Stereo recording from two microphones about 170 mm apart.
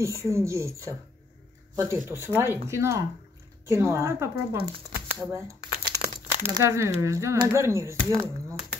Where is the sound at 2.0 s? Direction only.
15° right (ahead or behind).